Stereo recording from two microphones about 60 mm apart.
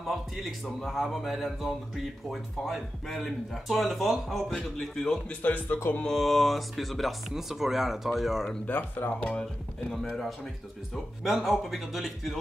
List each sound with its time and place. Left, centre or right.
0.0 s speech: centre
5.4 s speech: left
6.0 s speech: centre
8.7 s speech: left
9.2 s speech: centre
11.2 s speech: centre